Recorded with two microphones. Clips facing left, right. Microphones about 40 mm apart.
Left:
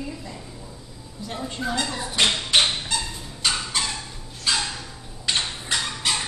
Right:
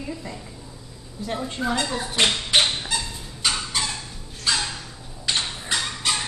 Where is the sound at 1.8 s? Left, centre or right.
Centre.